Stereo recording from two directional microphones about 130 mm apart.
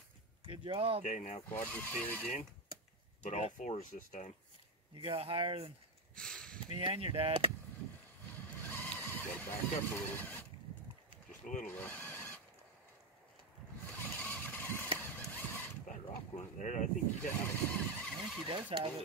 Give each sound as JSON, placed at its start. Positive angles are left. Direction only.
{"t": 0.5, "sound": "speech", "side_deg": -45}
{"t": 1.0, "sound": "speech", "side_deg": 70}
{"t": 1.5, "sound": "speech", "side_deg": 15}
{"t": 3.3, "sound": "speech", "side_deg": 65}
{"t": 4.9, "sound": "speech", "side_deg": -45}
{"t": 6.1, "sound": "a sound", "side_deg": 5}
{"t": 6.7, "sound": "speech", "side_deg": -45}
{"t": 8.5, "sound": "vehicle", "side_deg": 15}
{"t": 11.6, "sound": "speech", "side_deg": 15}
{"t": 13.8, "sound": "vehicle", "side_deg": 15}
{"t": 15.9, "sound": "a sound", "side_deg": 70}
{"t": 17.7, "sound": "speech", "side_deg": 10}
{"t": 18.2, "sound": "speech", "side_deg": 0}
{"t": 18.5, "sound": "speech", "side_deg": -40}